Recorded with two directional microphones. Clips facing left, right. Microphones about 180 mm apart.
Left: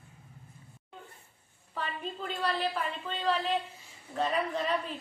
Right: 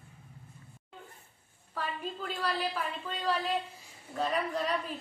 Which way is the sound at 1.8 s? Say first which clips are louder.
Even; 5° right (ahead or behind).